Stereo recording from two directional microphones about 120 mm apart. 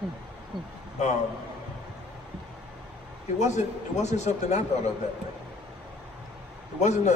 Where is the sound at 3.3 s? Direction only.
70° left (ahead or behind).